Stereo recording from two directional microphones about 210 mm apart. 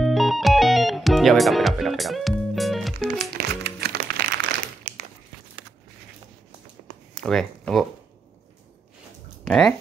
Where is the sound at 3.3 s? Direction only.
50° right (ahead or behind).